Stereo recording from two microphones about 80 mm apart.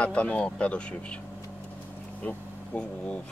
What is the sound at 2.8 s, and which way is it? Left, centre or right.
Speech, centre.